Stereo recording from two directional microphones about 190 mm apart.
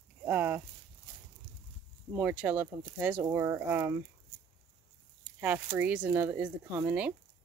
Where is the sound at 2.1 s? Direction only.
10° right (ahead or behind).